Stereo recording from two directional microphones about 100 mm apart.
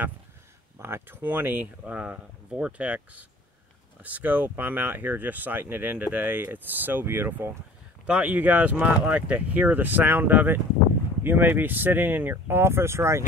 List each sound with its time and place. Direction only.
0.7 s speech: 25° right (ahead or behind)